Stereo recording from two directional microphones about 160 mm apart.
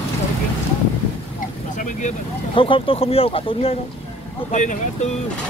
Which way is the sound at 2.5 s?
35° left (ahead or behind).